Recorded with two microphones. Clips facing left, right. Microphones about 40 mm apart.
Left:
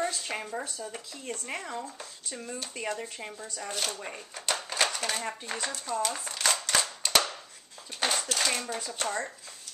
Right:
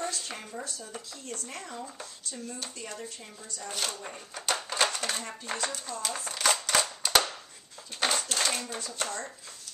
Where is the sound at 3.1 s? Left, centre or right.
Left.